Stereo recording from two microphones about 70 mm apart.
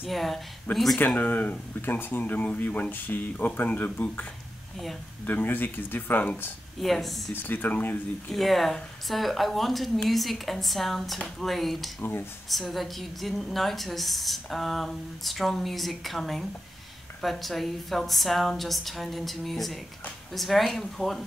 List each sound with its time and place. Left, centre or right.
0.0 s a woman's voice: centre
0.9 s speech: left
6.8 s a woman's voice: centre
7.3 s speech: left
8.3 s a woman's voice: centre
12.0 s speech: left
12.4 s a woman's voice: centre